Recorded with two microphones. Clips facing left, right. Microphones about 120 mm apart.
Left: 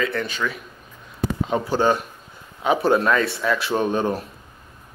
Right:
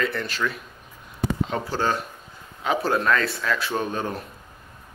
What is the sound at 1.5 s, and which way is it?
Speech, 15° left (ahead or behind).